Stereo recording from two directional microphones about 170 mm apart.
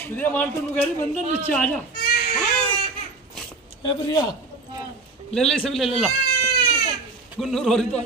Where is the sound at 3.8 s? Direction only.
25° left (ahead or behind).